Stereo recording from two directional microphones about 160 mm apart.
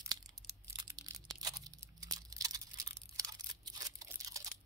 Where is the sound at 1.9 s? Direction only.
25° right (ahead or behind).